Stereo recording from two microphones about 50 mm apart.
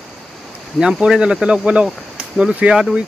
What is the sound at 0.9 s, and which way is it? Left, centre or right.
Speech, centre.